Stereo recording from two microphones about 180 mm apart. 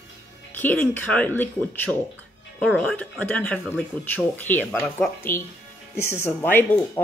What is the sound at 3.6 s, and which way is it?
Speech, 5° right (ahead or behind).